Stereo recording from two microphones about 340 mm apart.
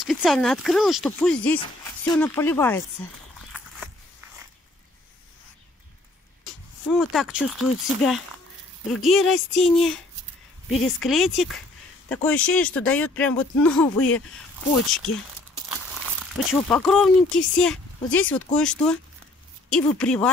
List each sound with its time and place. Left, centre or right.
0.0 s speech: centre
6.9 s speech: centre
11.0 s speech: centre
16.3 s speech: centre